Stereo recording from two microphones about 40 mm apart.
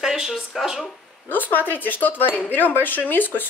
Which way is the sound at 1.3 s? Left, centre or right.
Left.